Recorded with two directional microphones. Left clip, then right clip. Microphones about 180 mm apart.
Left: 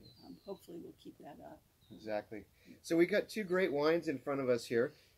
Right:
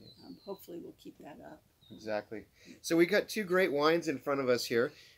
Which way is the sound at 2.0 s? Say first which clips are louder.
Right 3 dB; 15° right (ahead or behind).